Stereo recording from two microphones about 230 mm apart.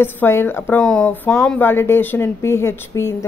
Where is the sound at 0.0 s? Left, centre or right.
Centre.